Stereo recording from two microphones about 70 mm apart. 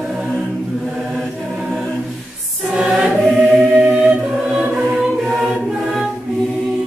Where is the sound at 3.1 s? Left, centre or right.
Centre.